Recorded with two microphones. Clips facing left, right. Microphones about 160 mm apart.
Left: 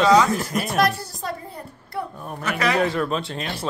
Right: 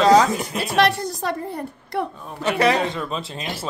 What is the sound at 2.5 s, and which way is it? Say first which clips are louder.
Speech: right 5 dB; 30° right (ahead or behind).